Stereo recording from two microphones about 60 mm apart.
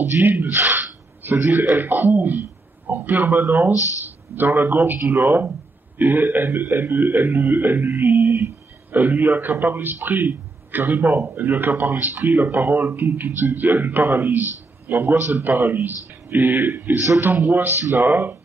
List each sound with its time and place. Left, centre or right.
0.2 s speech: right
3.7 s speech: left
4.4 s speech: right
5.0 s speech: right
5.9 s speech: right
7.8 s speech: right
8.2 s a sound: right
8.9 s a man's voice: right
13.6 s speech: right
14.0 s speech: right